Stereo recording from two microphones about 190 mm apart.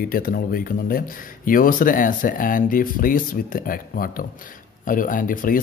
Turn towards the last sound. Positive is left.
turn(degrees=45)  # may be behind; listen again after turning